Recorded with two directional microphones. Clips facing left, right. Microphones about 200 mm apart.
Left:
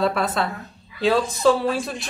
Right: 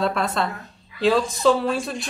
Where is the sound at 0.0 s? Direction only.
Centre (ahead or behind).